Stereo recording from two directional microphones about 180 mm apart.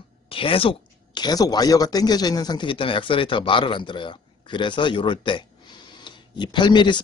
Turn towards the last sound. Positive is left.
turn(degrees=25)  # may be behind; listen again after turning